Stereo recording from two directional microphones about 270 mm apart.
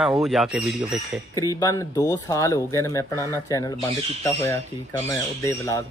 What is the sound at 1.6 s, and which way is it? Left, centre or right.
Speech, centre.